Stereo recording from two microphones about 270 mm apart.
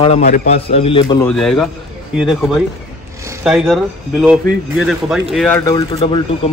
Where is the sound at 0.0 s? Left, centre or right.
Left.